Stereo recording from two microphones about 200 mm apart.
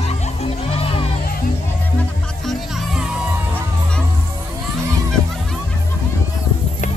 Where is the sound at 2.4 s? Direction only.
Centre (ahead or behind).